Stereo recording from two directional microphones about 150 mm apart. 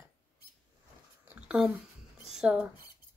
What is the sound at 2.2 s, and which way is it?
Speech, 5° right (ahead or behind).